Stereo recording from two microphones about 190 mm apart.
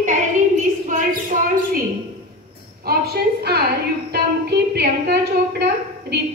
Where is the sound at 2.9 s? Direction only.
55° right (ahead or behind).